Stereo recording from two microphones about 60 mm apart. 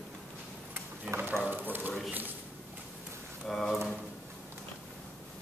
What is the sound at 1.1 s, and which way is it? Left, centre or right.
Speech, right.